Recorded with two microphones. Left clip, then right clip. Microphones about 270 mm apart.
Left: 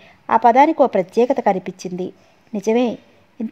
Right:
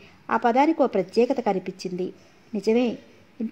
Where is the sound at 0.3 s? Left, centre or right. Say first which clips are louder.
Left 8 dB; left.